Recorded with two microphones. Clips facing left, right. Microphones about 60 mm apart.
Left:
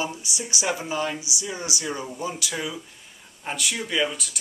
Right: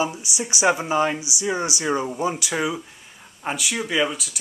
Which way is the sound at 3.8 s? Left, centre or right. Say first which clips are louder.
Right 3 dB; centre.